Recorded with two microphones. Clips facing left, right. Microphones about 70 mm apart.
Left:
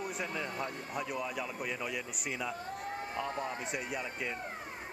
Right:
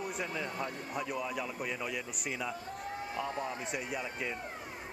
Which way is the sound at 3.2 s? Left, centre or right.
Left.